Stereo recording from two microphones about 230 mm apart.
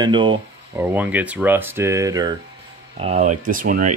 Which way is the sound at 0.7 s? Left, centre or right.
Centre.